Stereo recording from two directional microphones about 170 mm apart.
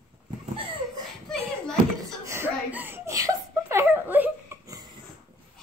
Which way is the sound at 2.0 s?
15° right (ahead or behind).